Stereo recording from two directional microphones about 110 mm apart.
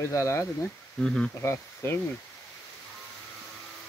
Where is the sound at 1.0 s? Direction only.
5° left (ahead or behind).